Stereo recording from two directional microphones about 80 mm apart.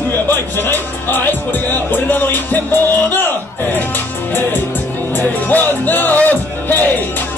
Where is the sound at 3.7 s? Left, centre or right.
Left.